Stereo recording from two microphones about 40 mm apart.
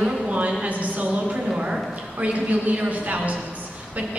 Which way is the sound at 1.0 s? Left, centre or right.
Right.